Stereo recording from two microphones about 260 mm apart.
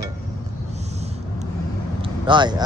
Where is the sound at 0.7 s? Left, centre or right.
Right.